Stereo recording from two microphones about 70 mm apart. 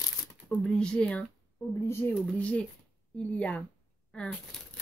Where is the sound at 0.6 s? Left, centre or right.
Centre.